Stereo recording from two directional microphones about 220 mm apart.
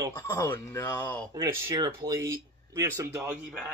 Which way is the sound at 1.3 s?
15° right (ahead or behind).